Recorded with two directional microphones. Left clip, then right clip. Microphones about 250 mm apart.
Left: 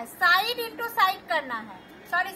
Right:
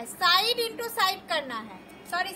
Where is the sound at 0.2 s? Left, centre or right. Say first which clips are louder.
Left 1 dB; centre.